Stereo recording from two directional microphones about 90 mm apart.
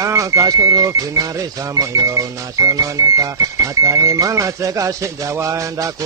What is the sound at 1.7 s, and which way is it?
Speech, 40° right (ahead or behind).